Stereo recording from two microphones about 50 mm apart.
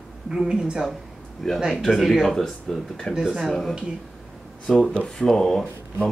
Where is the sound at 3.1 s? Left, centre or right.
Centre.